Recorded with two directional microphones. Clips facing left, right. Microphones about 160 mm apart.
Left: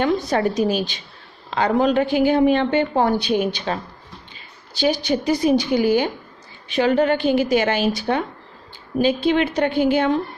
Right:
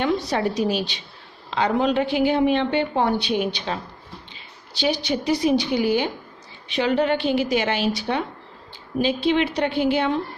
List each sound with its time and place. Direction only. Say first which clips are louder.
0.0 s a woman's voice: left 3 dB; 50° left (ahead or behind)